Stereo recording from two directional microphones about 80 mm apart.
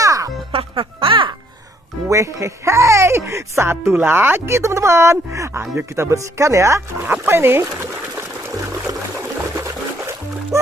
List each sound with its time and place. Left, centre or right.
0.0 s music: right
0.7 s music: right
2.0 s speech: right
7.0 s a sound: right
9.6 s music: right